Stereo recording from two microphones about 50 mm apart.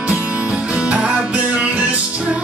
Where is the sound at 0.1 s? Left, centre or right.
Right.